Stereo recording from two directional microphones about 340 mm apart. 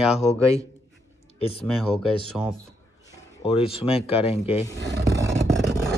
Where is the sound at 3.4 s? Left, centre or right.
Centre.